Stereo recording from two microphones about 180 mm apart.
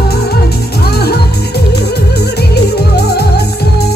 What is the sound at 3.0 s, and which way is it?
Music, 65° left (ahead or behind).